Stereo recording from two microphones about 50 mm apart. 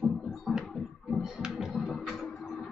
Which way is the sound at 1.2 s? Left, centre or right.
Centre.